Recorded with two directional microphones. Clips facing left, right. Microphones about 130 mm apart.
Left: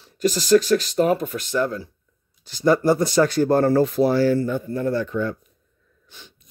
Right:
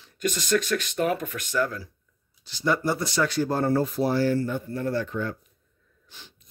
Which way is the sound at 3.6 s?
90° left.